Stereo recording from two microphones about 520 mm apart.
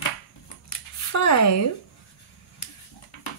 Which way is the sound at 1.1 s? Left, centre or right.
Left.